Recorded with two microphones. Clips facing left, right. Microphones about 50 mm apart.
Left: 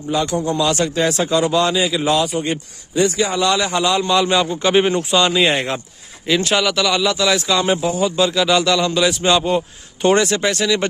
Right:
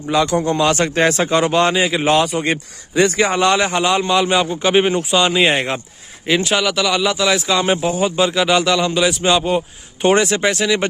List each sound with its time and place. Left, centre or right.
0.1 s a man's voice: right
0.5 s a man's voice: right
3.1 s speech: right; by 5.8 s centre
6.4 s speech: centre